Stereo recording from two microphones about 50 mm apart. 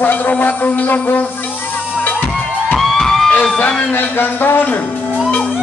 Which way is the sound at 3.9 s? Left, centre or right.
Left.